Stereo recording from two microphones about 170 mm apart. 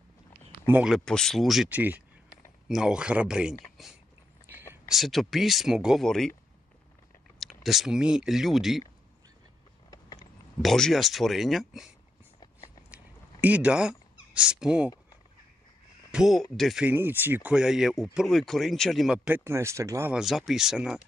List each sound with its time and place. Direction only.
0.7 s speech: 5° right (ahead or behind)
4.8 s speech: centre (ahead or behind)
7.3 s speech: centre (ahead or behind)
9.8 s a sound: 20° left (ahead or behind)
10.6 s speech: centre (ahead or behind)
12.4 s a sound: 30° left (ahead or behind)
12.9 s a sound: 10° right (ahead or behind)
16.1 s speech: centre (ahead or behind); by 20.1 s 20° right (ahead or behind)
20.1 s speech: centre (ahead or behind)